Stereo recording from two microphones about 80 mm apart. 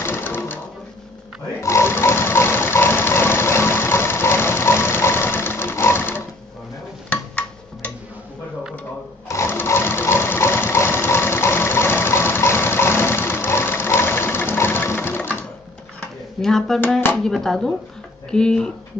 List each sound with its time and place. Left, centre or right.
0.0 s a sound: left
1.6 s pig: left
7.1 s tick-tock: centre
9.3 s sewing machine: left
16.3 s a sound: centre
17.2 s speech: centre